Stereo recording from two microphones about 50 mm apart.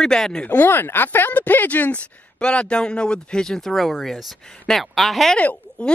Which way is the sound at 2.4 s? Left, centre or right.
Centre.